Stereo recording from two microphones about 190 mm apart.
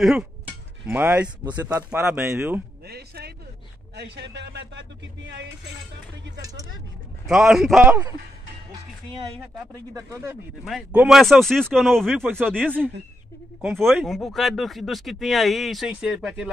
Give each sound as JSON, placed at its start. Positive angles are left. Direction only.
{"t": 0.0, "sound": "speech", "side_deg": 0}
{"t": 2.9, "sound": "speech", "side_deg": -55}
{"t": 7.2, "sound": "speech", "side_deg": 0}
{"t": 9.9, "sound": "speech", "side_deg": -15}
{"t": 10.6, "sound": "speech", "side_deg": -5}
{"t": 12.3, "sound": "speech", "side_deg": -10}